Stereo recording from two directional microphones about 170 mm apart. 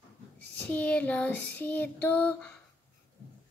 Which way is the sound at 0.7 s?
10° left (ahead or behind).